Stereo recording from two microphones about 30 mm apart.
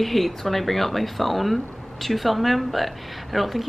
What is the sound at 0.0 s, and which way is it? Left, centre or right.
Speech, centre.